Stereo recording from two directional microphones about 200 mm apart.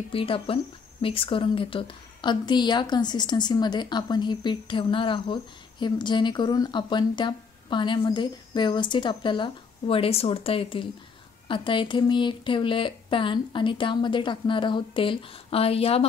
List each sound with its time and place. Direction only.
0.1 s a woman's voice: 25° left (ahead or behind)